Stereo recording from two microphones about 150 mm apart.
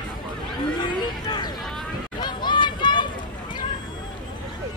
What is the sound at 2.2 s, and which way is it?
Hubbub, 30° left (ahead or behind).